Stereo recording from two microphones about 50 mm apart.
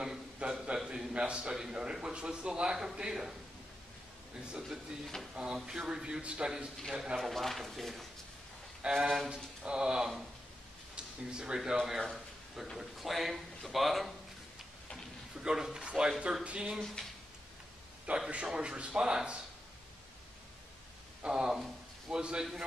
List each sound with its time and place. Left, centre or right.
0.0 s a man's voice: centre
4.6 s speech: centre
5.3 s a man's voice: centre
6.8 s speech: centre
8.8 s a man's voice: centre
11.3 s a man's voice: centre
12.0 s speech: centre
15.4 s a man's voice: centre
18.1 s speech: right
18.5 s speech: centre
21.3 s a man's voice: centre